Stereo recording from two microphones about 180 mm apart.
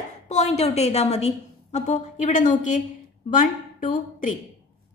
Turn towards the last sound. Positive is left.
turn(degrees=45)  # may be behind; listen again after turning